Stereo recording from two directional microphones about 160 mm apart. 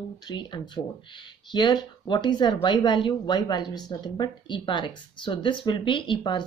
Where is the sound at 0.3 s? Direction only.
30° left (ahead or behind).